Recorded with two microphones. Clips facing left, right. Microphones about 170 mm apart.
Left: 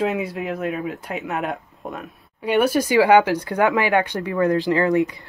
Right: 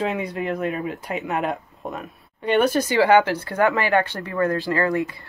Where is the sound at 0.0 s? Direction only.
5° left (ahead or behind).